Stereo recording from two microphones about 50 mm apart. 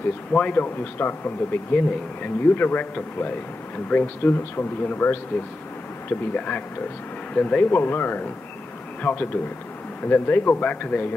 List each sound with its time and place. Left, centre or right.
0.3 s speech: left
0.9 s speech: left
1.7 s a man's voice: left
6.3 s a man's voice: left
7.8 s a man's voice: left